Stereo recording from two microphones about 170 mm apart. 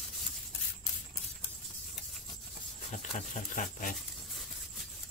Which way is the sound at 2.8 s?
50° left (ahead or behind).